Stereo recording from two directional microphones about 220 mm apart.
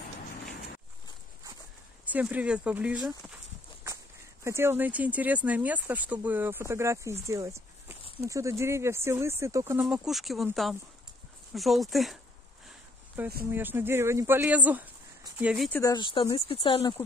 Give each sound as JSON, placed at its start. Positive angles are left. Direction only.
{"t": 2.0, "sound": "speech", "side_deg": -5}
{"t": 4.5, "sound": "speech", "side_deg": -10}
{"t": 7.2, "sound": "a sound", "side_deg": -15}
{"t": 8.2, "sound": "speech", "side_deg": -15}
{"t": 15.8, "sound": "speech", "side_deg": 20}